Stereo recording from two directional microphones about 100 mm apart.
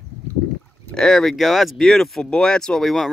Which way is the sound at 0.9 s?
5° left (ahead or behind).